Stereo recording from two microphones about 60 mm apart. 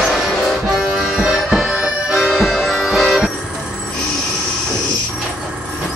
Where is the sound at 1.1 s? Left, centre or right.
Centre.